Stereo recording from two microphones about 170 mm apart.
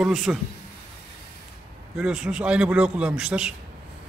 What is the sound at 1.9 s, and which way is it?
A man's voice, 5° right (ahead or behind).